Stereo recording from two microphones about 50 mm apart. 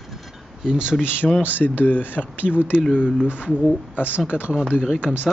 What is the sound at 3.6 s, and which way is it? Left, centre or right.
Speech, left.